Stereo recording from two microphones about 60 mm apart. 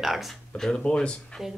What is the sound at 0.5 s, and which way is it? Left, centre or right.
Speech, centre.